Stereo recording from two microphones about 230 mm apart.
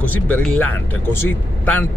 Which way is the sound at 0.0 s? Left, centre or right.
Centre.